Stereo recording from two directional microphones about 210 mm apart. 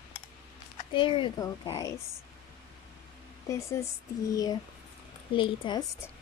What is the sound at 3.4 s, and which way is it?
Speech, 15° left (ahead or behind).